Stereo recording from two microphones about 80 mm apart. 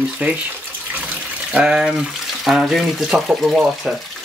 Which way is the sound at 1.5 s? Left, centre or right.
Centre.